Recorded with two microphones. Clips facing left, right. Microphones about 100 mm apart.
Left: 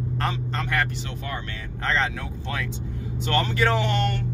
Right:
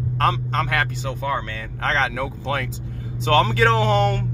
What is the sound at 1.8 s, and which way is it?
Speech, 90° right.